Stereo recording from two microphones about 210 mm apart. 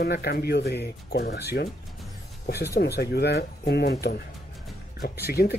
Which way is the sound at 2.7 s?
50° left (ahead or behind).